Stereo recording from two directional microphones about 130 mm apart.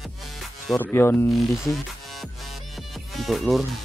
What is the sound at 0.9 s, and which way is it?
Speech, 20° left (ahead or behind).